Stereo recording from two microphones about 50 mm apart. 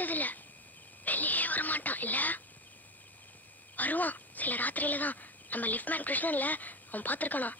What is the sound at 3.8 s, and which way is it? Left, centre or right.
Speech, left.